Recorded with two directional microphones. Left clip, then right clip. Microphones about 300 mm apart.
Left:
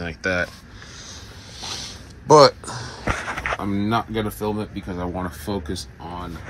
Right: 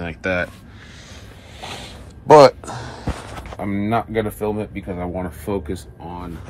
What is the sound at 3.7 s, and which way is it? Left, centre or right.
Speech, centre.